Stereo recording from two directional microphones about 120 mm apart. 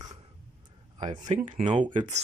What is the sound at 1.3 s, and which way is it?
Speech, 75° right (ahead or behind).